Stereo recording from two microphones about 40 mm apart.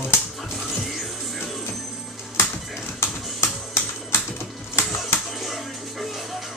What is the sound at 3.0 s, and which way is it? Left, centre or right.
Music, left.